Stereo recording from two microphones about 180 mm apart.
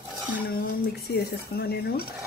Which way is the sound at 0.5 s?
60° left (ahead or behind).